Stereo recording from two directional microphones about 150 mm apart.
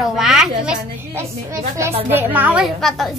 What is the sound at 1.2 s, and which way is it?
A woman's voice, 20° right (ahead or behind).